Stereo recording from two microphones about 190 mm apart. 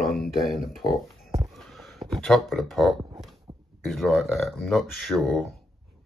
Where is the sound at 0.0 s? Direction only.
Centre (ahead or behind).